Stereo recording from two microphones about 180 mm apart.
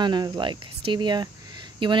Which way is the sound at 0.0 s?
25° right (ahead or behind).